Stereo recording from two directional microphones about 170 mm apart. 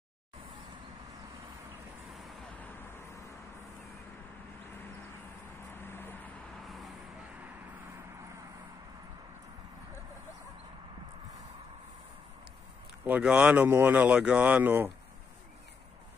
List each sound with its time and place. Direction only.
2.1 s vehicle: 10° left (ahead or behind)
5.8 s vehicle: 10° left (ahead or behind)
6.6 s vehicle: centre (ahead or behind)
13.0 s speech: 5° right (ahead or behind)